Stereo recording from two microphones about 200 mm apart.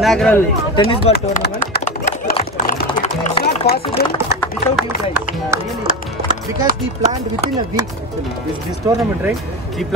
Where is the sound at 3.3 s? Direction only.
25° left (ahead or behind).